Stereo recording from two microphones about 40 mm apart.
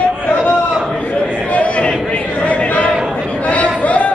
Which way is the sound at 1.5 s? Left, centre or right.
Left.